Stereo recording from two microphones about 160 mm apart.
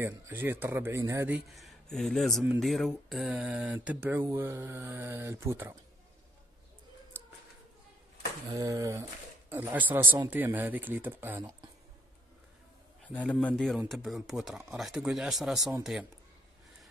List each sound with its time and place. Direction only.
0.0 s speech: 15° right (ahead or behind)
1.5 s speech: centre (ahead or behind); by 5.8 s 20° right (ahead or behind)
8.5 s speech: 20° right (ahead or behind)
13.1 s a man's voice: 10° left (ahead or behind)